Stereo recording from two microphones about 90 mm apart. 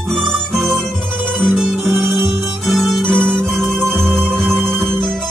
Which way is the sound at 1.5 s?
5° right (ahead or behind).